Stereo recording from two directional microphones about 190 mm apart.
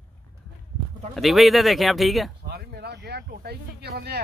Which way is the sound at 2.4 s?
60° right (ahead or behind).